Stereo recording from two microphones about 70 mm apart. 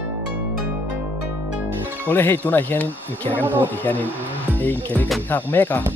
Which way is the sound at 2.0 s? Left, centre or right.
Left.